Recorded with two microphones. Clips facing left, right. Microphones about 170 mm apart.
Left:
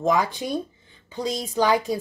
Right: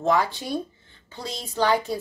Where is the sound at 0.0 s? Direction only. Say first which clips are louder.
Left 1 dB; 15° left (ahead or behind).